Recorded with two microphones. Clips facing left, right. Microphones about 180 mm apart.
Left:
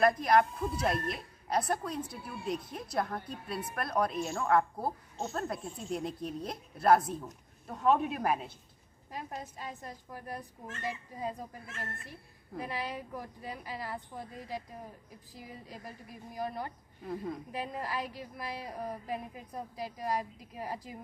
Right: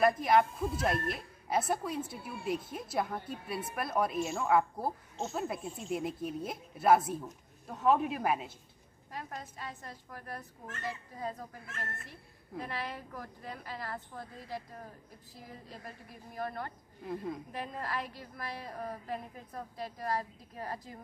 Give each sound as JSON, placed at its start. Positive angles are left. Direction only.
{"t": 0.0, "sound": "speech", "side_deg": 0}
{"t": 9.1, "sound": "a woman's voice", "side_deg": 15}
{"t": 16.3, "sound": "a woman's voice", "side_deg": 15}
{"t": 17.0, "sound": "a woman's voice", "side_deg": 0}